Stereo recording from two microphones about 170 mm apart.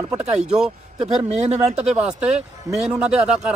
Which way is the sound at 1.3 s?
40° right (ahead or behind).